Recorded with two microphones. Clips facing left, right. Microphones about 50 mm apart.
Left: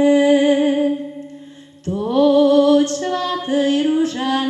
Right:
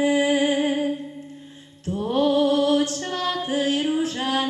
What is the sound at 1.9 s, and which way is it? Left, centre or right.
Mantra, right.